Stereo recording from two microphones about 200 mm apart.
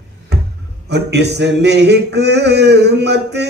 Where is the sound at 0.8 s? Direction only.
55° right (ahead or behind).